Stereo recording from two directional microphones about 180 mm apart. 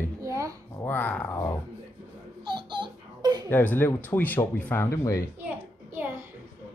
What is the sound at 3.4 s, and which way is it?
Speech, 10° left (ahead or behind).